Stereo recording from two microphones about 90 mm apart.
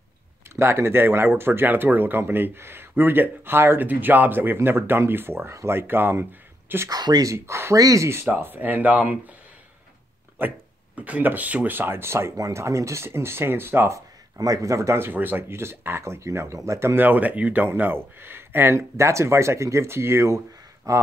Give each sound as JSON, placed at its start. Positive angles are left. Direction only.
{"t": 0.6, "sound": "speech", "side_deg": -30}
{"t": 6.9, "sound": "speech", "side_deg": -50}
{"t": 7.2, "sound": "speech", "side_deg": -30}
{"t": 10.4, "sound": "speech", "side_deg": -20}